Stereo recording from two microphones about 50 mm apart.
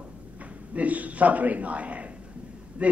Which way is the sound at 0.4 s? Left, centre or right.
Right.